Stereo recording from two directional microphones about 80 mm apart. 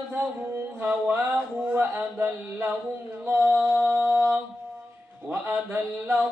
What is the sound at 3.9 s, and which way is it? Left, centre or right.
Speech, right.